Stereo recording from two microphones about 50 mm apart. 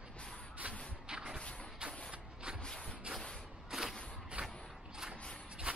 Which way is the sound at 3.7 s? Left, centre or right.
Centre.